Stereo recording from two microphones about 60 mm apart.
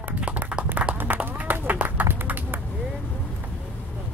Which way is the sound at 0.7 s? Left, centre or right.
Right.